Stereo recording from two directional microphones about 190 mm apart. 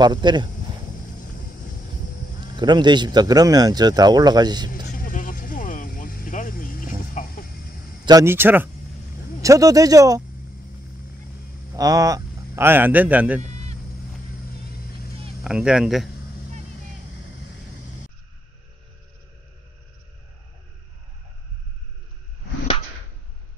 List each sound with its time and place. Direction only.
0.0 s speech: 25° right (ahead or behind)
2.6 s speech: 25° right (ahead or behind)
4.9 s vehicle: 45° left (ahead or behind)
8.0 s speech: 20° right (ahead or behind)
11.7 s a man's voice: 20° right (ahead or behind)
13.4 s a sound: 35° right (ahead or behind)
15.4 s speech: 5° right (ahead or behind)